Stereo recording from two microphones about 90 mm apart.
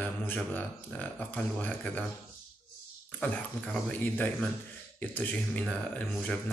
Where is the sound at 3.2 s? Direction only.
15° left (ahead or behind).